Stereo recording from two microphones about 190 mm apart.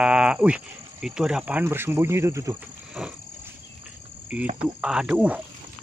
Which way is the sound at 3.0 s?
5° right (ahead or behind).